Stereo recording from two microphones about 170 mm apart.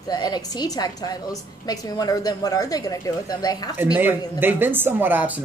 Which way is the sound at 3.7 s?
10° right (ahead or behind).